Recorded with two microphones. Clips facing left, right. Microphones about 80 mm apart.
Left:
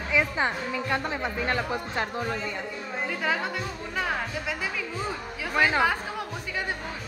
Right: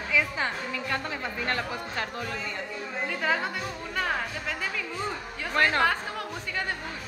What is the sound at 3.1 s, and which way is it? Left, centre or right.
Speech, centre.